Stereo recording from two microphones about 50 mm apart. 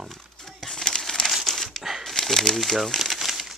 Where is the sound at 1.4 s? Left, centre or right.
Centre.